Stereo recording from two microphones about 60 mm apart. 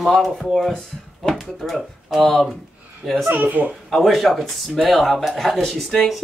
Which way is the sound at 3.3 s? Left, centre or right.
Right.